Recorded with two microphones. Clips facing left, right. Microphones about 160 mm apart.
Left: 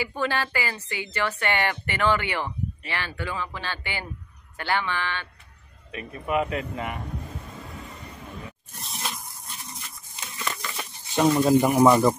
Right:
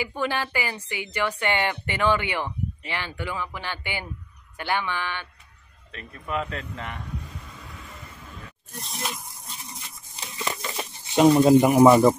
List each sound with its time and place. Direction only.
0.0 s speech: 15° right (ahead or behind)
5.9 s speech: 10° left (ahead or behind)
10.2 s a sound: 25° right (ahead or behind)
11.1 s speech: 20° right (ahead or behind)
11.8 s speech: 5° right (ahead or behind)